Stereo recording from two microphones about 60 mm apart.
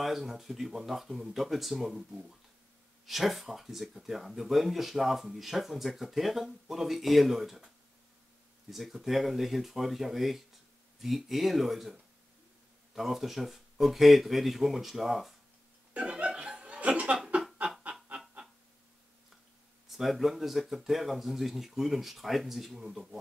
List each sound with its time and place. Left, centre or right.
0.0 s speech: centre
15.9 s chuckle: centre
19.9 s speech: centre